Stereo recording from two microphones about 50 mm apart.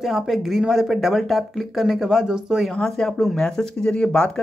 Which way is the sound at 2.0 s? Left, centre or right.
Centre.